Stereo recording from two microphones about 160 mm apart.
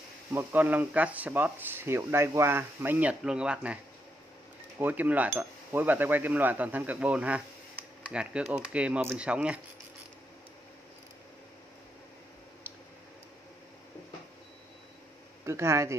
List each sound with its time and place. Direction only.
0.3 s speech: 15° right (ahead or behind)
15.4 s speech: 15° right (ahead or behind)